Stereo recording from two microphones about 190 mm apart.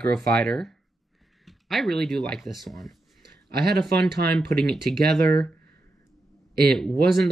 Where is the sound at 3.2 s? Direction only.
55° right (ahead or behind).